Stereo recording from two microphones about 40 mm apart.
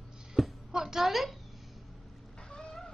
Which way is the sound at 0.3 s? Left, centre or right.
Centre.